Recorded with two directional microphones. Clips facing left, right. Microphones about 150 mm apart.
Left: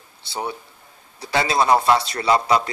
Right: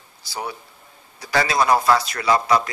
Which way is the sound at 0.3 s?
25° left (ahead or behind).